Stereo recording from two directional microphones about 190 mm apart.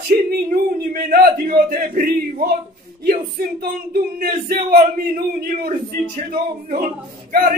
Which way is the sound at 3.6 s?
50° right (ahead or behind).